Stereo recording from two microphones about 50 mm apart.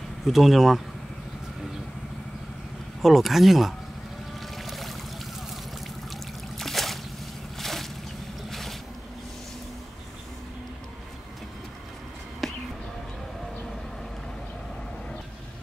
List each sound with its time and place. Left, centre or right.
0.2 s speech: centre
3.0 s speech: centre
4.4 s boat: centre
6.1 s trickle: centre
7.5 s a sound: centre
8.5 s boat: centre
12.4 s a sound: centre